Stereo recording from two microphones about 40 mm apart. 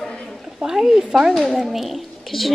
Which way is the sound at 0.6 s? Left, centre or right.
Centre.